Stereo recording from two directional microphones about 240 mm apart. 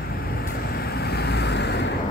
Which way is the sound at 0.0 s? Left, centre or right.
Left.